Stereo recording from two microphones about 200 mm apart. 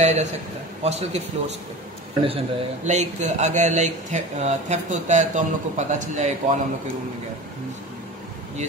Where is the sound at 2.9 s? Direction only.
35° right (ahead or behind).